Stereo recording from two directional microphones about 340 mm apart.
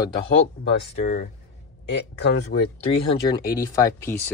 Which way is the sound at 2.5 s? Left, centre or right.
Left.